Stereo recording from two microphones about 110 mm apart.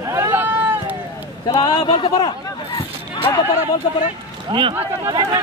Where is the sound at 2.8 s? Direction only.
45° left (ahead or behind).